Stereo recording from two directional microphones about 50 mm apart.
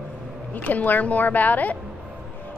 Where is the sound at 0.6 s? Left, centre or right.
Left.